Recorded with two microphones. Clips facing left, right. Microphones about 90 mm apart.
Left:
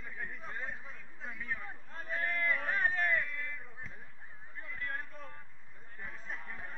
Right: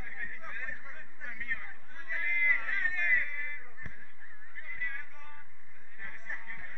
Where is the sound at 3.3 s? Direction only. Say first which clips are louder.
Even; 15° right (ahead or behind).